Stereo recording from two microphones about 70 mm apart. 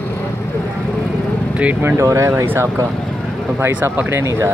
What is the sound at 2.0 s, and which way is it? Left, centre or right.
Speech, right.